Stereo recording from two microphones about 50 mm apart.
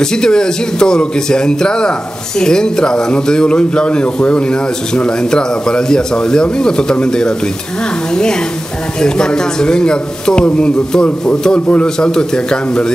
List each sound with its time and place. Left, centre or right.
0.0 s speech: centre